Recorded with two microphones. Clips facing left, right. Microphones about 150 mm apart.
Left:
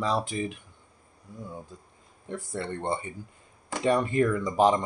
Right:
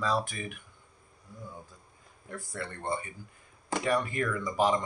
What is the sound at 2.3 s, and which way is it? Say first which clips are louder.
Speech: left 6 dB; 25° left (ahead or behind).